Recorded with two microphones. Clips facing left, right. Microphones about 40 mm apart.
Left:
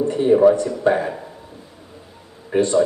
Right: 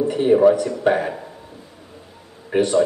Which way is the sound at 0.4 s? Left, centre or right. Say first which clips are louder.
Left 1 dB; centre.